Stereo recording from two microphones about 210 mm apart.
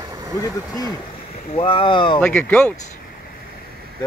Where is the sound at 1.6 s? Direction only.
25° left (ahead or behind).